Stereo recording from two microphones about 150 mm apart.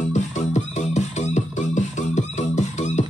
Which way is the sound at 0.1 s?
50° left (ahead or behind).